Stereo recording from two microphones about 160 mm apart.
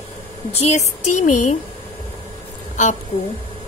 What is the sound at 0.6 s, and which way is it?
Speech, 45° left (ahead or behind).